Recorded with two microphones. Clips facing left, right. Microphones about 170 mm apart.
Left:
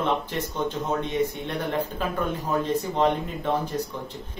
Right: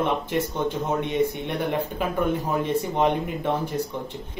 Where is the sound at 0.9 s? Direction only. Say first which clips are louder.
Right 2 dB; 10° right (ahead or behind).